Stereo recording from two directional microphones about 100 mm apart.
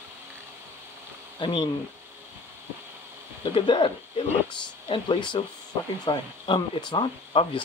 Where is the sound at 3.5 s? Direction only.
55° left (ahead or behind).